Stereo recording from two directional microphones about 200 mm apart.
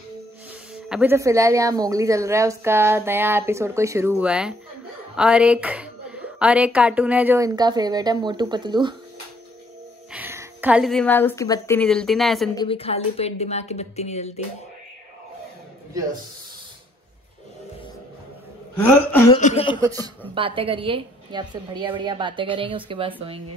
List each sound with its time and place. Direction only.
0.8 s speech: 5° right (ahead or behind)
1.1 s a woman's voice: 15° right (ahead or behind)
10.1 s a woman's voice: 10° right (ahead or behind)
12.5 s speech: 30° left (ahead or behind)
19.3 s speech: 30° left (ahead or behind)
19.8 s a woman's voice: 20° right (ahead or behind)